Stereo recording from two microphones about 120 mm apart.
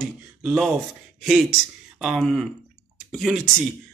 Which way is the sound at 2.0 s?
5° right (ahead or behind).